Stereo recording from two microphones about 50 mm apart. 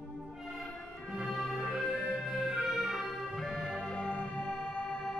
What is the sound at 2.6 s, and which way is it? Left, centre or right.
Music, centre.